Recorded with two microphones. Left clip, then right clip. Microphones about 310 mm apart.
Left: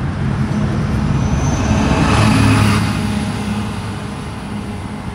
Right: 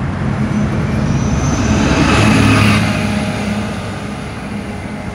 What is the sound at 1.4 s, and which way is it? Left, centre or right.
Vehicle, left.